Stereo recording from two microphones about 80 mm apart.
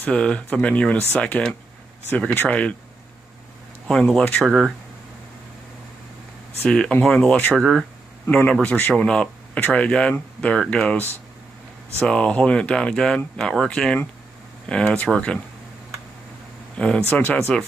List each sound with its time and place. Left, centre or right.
0.0 s speech: centre
4.4 s speech: centre
6.6 s speech: centre
12.0 s speech: centre
16.7 s speech: centre
17.1 s speech: left